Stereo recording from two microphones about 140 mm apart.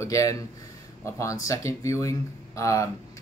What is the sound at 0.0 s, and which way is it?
Speech, 20° left (ahead or behind).